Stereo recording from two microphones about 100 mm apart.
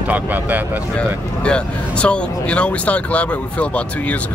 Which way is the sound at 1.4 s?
10° left (ahead or behind).